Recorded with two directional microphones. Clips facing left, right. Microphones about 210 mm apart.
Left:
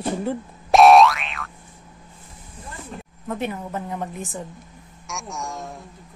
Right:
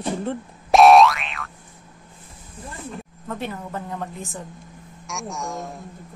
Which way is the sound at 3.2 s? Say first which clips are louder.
Left 3 dB; 15° left (ahead or behind).